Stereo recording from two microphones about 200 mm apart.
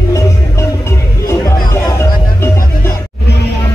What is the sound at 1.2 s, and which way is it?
Music, 15° left (ahead or behind).